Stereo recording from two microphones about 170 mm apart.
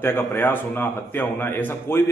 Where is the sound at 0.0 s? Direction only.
15° left (ahead or behind).